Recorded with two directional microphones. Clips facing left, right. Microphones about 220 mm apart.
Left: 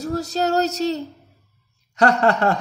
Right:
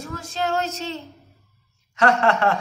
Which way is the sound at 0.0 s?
40° left (ahead or behind).